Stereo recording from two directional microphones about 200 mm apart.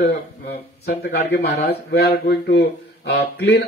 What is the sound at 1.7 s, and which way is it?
Speech, 50° left (ahead or behind).